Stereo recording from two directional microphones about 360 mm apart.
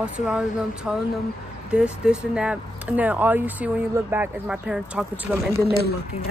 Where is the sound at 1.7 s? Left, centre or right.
Centre.